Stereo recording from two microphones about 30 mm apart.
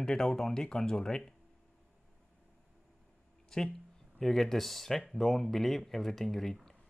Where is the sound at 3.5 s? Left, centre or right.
Centre.